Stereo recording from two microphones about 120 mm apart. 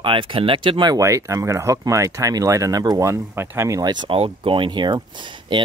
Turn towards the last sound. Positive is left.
turn(degrees=-40)  # may be behind; listen again after turning